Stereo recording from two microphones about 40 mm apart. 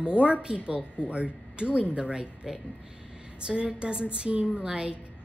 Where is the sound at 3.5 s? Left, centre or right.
Right.